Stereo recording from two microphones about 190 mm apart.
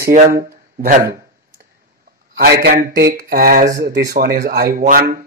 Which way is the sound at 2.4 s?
60° right (ahead or behind).